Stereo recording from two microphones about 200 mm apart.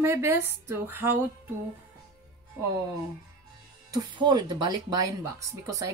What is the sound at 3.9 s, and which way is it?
Speech, 20° right (ahead or behind).